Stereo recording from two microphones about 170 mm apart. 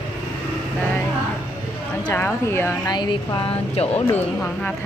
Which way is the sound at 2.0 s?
10° left (ahead or behind).